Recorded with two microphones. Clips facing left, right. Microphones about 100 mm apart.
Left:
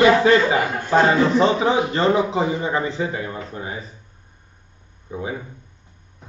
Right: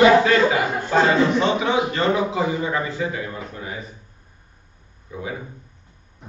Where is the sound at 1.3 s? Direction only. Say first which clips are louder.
Left 2 dB; 30° left (ahead or behind).